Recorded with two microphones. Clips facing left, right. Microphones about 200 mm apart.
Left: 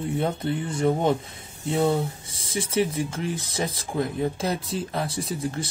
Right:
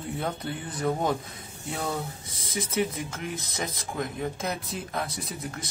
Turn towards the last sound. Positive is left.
turn(degrees=30)  # may be behind; listen again after turning